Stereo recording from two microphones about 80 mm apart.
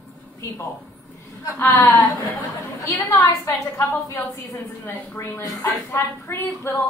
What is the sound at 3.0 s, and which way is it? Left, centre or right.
Speech, left.